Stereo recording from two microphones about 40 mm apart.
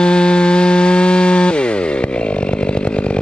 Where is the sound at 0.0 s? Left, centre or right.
Left.